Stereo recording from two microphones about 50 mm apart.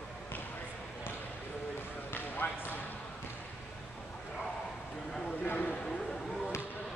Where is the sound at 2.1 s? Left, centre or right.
Left.